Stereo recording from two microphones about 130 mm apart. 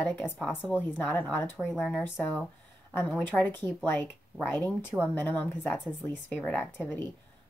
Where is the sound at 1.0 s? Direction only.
15° left (ahead or behind).